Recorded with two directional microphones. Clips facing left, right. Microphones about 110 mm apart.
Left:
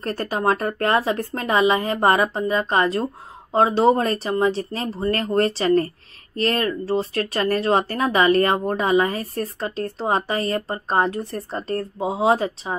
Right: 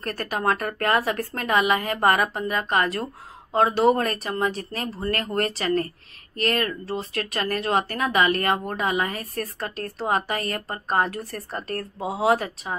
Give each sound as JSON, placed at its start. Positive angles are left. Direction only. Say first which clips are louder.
{"t": 0.0, "sound": "speech", "louder": "left 3 dB", "side_deg": 30}